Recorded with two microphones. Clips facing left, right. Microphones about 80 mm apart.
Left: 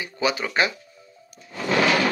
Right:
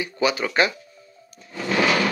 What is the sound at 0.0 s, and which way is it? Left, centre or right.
Speech, left.